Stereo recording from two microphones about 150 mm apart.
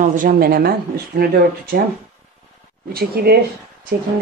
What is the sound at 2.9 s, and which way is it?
Speech, 90° right.